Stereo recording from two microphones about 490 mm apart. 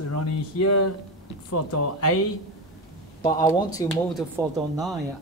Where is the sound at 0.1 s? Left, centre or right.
Left.